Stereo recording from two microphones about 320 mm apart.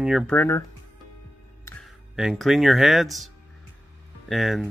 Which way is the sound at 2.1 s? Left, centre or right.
Centre.